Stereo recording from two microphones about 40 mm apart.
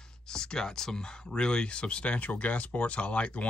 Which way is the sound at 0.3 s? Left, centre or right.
Centre.